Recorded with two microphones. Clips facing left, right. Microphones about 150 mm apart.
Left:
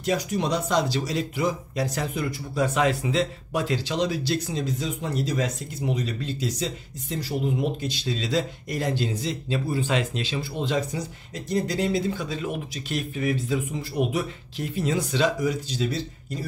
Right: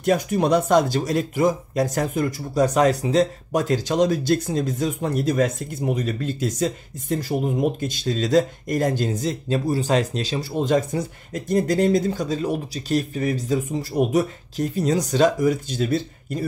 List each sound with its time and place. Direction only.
0.0 s speech: 50° right (ahead or behind)